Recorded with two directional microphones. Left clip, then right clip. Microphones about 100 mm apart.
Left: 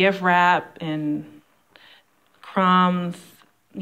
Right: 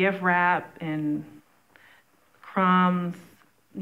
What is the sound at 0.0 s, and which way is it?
A woman's voice, 25° left (ahead or behind).